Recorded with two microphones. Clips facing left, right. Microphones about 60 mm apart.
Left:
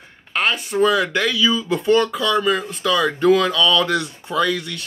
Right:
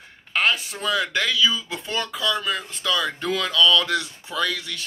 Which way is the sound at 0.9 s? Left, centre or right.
Centre.